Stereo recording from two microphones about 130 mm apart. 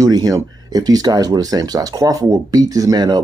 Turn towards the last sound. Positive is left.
turn(degrees=-30)  # may be behind; listen again after turning